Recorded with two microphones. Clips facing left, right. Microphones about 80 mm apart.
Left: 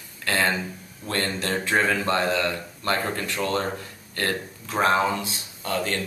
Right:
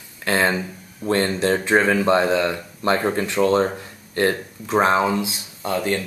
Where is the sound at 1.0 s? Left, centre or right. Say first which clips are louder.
Right 8 dB; right.